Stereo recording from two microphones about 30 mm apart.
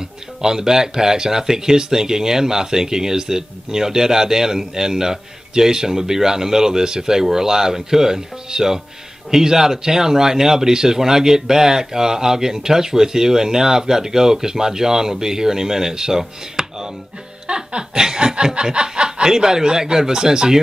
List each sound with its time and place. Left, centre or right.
0.4 s speech: centre
17.5 s snicker: right